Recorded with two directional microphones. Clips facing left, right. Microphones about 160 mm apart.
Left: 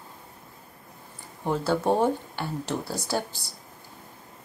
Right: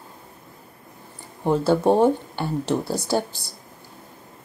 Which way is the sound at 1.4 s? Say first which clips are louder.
Right 6 dB; 30° right (ahead or behind).